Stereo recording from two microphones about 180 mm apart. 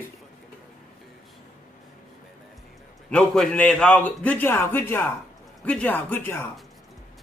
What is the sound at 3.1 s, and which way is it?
A man's voice, 5° left (ahead or behind).